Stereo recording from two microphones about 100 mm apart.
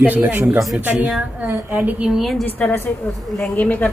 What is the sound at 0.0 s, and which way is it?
A woman's voice, 15° right (ahead or behind).